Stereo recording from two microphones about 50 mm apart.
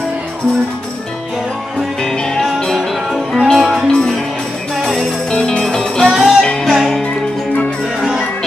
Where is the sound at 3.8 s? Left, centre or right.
Centre.